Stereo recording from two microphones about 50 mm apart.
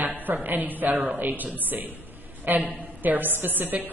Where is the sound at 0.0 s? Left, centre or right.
Right.